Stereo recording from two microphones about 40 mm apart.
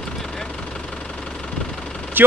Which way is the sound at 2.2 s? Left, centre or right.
Right.